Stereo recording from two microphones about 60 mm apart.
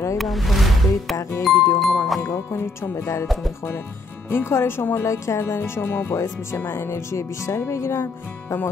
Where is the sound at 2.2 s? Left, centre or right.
Left.